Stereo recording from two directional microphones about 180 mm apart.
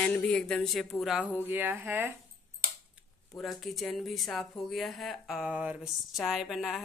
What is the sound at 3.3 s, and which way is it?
Speech, centre (ahead or behind).